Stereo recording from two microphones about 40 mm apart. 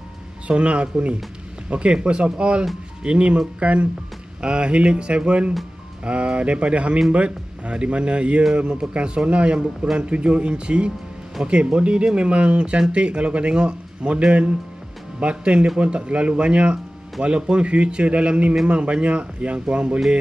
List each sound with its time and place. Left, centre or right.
0.5 s speech: right